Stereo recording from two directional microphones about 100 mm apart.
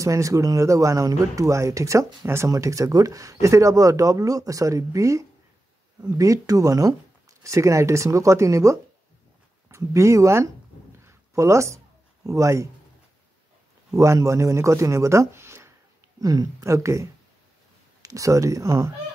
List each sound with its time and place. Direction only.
0.0 s speech: 35° right (ahead or behind)
11.1 s a sound: 30° right (ahead or behind)
12.3 s speech: 30° right (ahead or behind)
13.9 s speech: 30° right (ahead or behind)
16.2 s speech: 40° right (ahead or behind)